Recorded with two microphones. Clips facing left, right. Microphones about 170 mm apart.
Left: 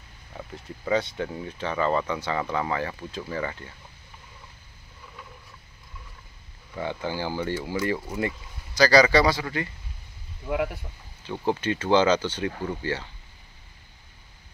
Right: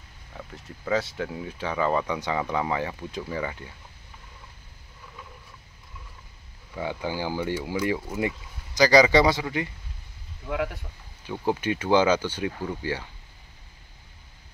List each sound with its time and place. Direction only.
0.3 s speech: centre (ahead or behind)
6.7 s speech: 10° right (ahead or behind)
10.4 s speech: 10° left (ahead or behind)
11.4 s speech: 10° right (ahead or behind)